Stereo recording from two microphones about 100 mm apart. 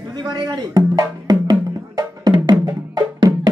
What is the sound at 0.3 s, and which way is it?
Music, 40° right (ahead or behind).